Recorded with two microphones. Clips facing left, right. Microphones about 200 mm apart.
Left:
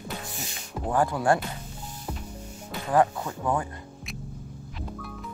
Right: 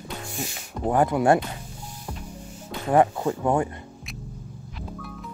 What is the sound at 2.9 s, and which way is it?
Speech, 25° right (ahead or behind).